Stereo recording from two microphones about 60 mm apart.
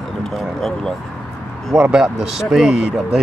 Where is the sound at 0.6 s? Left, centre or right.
Centre.